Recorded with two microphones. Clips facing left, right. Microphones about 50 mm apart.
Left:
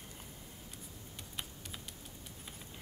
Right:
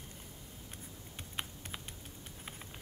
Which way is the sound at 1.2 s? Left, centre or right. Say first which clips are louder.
Right 4 dB; right.